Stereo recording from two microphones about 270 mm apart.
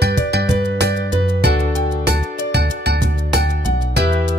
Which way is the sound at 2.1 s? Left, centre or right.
Right.